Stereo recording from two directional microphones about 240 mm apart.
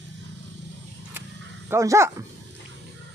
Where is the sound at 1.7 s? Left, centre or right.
Centre.